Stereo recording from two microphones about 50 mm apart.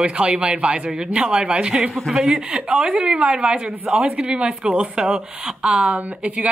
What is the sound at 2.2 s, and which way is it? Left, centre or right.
A woman's voice, centre.